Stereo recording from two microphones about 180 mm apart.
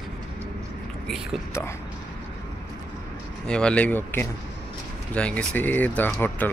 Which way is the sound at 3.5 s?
5° left (ahead or behind).